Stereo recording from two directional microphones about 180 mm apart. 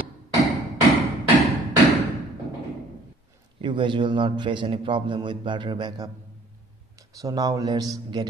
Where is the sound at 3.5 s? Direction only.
25° right (ahead or behind).